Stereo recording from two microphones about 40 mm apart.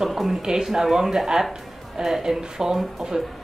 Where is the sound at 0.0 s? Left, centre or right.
Centre.